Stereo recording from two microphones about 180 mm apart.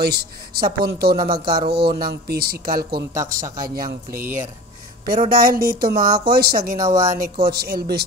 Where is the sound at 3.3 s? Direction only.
50° right (ahead or behind).